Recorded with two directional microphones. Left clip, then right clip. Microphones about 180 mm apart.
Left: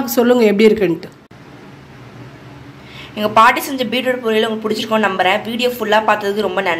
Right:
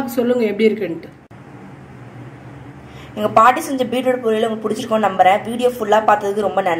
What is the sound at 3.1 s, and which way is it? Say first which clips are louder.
Speech: left 1 dB; 15° right (ahead or behind).